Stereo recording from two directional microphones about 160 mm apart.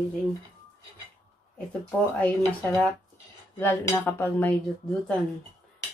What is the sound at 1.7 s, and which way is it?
Speech, 10° left (ahead or behind).